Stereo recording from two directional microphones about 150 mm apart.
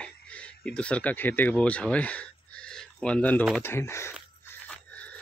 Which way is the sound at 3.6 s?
15° left (ahead or behind).